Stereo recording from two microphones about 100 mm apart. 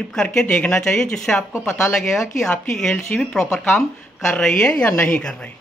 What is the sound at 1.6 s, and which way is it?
Speech, 25° left (ahead or behind).